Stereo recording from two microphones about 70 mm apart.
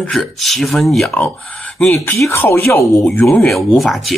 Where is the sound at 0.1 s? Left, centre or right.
Centre.